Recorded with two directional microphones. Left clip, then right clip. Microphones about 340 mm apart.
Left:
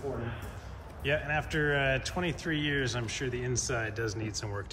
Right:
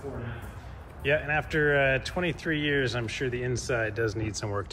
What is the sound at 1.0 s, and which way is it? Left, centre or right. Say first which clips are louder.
Speech: right 4 dB; centre.